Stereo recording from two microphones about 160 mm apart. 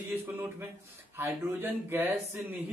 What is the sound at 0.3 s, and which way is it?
A man's voice, 10° right (ahead or behind).